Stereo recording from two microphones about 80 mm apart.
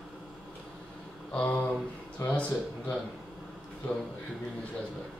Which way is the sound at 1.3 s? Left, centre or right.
Centre.